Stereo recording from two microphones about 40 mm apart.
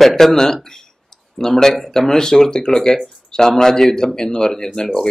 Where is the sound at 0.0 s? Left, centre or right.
Centre.